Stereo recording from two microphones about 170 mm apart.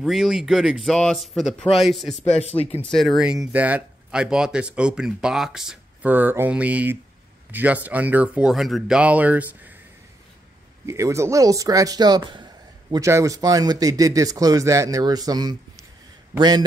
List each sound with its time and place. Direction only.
0.0 s speech: centre (ahead or behind)
2.2 s speech: 40° left (ahead or behind)
2.8 s speech: centre (ahead or behind)
10.9 s speech: 15° right (ahead or behind)